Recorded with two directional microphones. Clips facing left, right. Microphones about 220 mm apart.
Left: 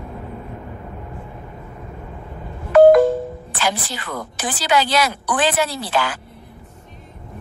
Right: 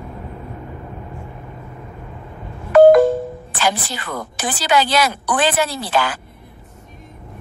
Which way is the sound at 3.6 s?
50° right (ahead or behind).